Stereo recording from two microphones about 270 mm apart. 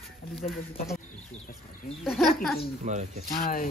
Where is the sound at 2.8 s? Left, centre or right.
Right.